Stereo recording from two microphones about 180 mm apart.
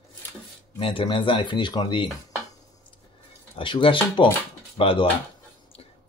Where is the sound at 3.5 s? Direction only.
30° left (ahead or behind).